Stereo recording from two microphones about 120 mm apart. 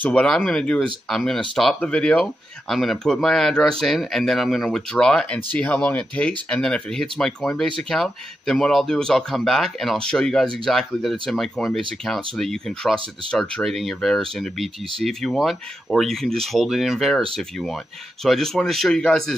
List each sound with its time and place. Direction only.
0.0 s speech: 10° left (ahead or behind)